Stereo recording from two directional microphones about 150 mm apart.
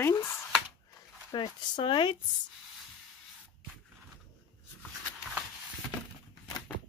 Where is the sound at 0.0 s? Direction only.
15° left (ahead or behind).